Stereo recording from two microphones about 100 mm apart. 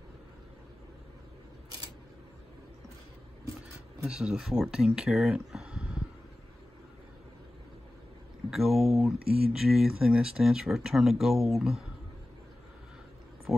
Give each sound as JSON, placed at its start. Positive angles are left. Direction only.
{"t": 4.0, "sound": "speech", "side_deg": -10}
{"t": 8.5, "sound": "speech", "side_deg": -5}
{"t": 13.5, "sound": "a sound", "side_deg": 0}